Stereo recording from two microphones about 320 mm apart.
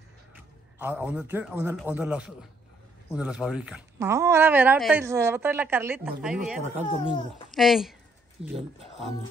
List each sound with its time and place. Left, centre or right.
0.3 s a man's voice: centre
6.6 s speech: right
7.5 s speech: centre